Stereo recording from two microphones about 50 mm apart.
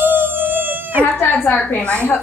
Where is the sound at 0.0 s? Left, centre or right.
Right.